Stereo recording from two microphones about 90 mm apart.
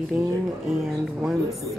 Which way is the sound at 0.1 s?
20° right (ahead or behind).